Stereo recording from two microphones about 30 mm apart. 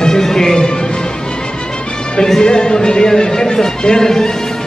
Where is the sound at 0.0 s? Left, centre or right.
Centre.